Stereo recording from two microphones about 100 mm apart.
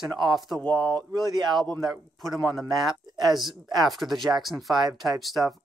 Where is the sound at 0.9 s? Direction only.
45° right (ahead or behind).